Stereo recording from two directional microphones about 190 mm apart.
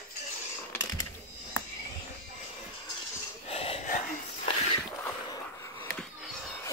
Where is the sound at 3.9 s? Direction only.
45° left (ahead or behind).